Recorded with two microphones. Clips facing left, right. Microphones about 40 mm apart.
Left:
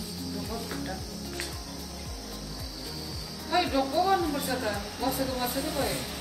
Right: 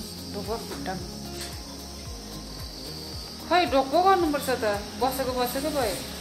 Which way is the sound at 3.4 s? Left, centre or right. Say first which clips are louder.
Right 5 dB; right.